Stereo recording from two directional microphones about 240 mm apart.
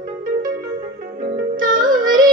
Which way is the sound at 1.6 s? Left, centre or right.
Right.